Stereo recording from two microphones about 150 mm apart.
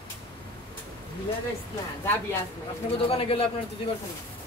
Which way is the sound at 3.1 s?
40° left (ahead or behind).